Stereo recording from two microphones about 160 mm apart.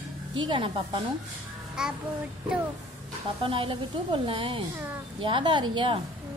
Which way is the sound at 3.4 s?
35° right (ahead or behind).